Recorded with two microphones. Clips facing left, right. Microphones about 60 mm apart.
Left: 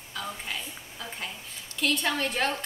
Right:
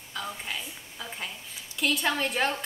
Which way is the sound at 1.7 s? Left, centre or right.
Centre.